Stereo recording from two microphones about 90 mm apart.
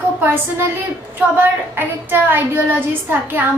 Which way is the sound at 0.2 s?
25° right (ahead or behind).